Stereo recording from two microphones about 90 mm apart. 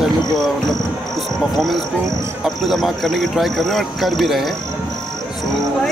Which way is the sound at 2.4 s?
Centre (ahead or behind).